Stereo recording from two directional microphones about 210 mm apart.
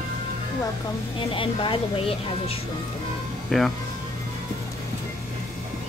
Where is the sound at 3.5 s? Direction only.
Centre (ahead or behind).